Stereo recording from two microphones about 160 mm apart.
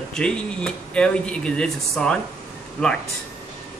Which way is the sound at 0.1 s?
5° left (ahead or behind).